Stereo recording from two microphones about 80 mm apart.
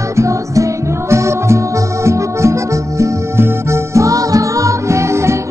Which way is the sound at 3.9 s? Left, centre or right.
Right.